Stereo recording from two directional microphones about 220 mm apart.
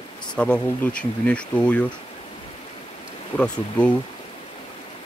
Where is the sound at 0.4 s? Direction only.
5° left (ahead or behind).